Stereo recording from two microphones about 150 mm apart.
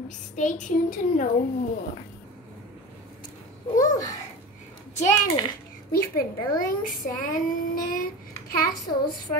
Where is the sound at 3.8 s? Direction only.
25° left (ahead or behind).